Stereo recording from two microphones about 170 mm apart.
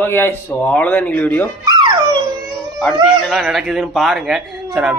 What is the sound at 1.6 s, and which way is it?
Dog, 25° right (ahead or behind).